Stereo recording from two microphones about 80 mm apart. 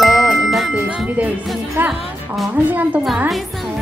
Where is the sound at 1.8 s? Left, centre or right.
Right.